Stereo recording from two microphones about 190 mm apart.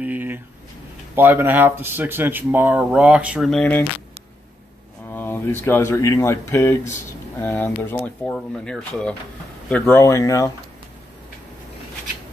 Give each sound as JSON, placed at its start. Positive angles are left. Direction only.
{"t": 0.0, "sound": "a sound", "side_deg": -10}
{"t": 1.1, "sound": "speech", "side_deg": -10}
{"t": 5.1, "sound": "speech", "side_deg": 10}